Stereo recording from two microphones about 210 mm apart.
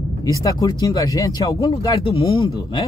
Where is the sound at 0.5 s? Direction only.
15° left (ahead or behind).